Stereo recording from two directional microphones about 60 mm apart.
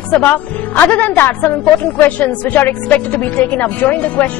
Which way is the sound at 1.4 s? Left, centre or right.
Centre.